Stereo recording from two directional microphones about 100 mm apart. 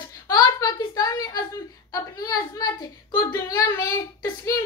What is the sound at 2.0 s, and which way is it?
Whimper, 40° left (ahead or behind).